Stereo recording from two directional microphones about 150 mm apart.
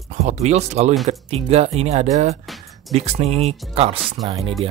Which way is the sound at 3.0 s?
45° right (ahead or behind).